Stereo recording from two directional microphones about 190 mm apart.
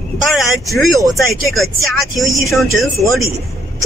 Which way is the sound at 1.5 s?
Centre (ahead or behind).